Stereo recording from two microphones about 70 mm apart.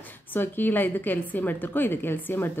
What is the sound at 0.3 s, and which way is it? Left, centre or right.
A woman's voice, left.